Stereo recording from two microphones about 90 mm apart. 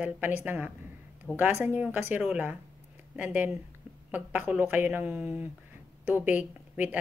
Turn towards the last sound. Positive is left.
turn(degrees=-15)  # may be behind; listen again after turning